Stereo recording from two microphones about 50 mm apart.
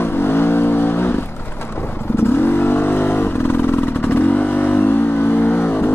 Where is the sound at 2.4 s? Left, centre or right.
Left.